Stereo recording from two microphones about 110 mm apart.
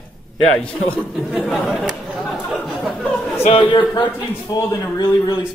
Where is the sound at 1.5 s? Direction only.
5° right (ahead or behind).